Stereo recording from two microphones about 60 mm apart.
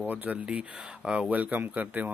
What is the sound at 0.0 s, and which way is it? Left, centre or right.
Speech, right.